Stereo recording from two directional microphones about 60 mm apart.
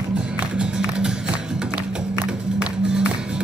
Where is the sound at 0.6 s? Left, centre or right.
Centre.